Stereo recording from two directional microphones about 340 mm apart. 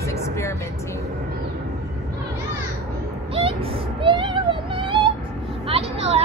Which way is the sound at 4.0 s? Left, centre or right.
Centre.